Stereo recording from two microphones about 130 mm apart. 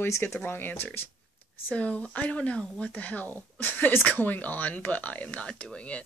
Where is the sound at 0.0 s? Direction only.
15° left (ahead or behind).